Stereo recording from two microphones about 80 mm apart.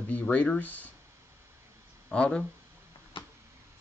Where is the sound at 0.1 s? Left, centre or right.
Centre.